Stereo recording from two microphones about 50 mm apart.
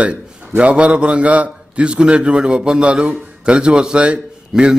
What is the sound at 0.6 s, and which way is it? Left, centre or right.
A man's voice, right.